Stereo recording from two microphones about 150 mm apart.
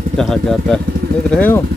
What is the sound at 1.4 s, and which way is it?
Speech, 15° left (ahead or behind).